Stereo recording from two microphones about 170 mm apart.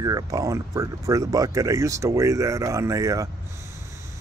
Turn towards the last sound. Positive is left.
turn(degrees=-20)  # may be behind; listen again after turning